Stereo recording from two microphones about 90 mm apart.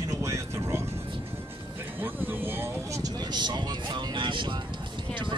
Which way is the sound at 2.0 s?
25° right (ahead or behind).